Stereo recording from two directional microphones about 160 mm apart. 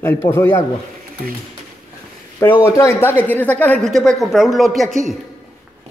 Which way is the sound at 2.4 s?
15° left (ahead or behind).